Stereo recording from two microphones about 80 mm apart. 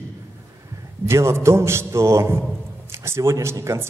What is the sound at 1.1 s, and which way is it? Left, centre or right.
A man's voice, right.